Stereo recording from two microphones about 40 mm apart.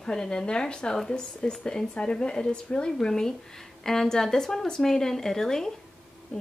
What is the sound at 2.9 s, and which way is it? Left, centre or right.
Speech, centre.